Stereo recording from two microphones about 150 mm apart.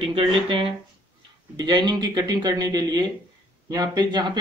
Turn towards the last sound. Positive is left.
turn(degrees=-25)  # may be behind; listen again after turning